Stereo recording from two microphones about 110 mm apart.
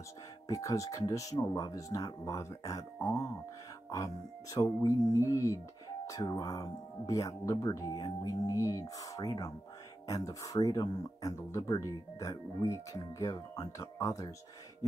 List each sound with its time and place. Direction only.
0.5 s speech: 30° left (ahead or behind)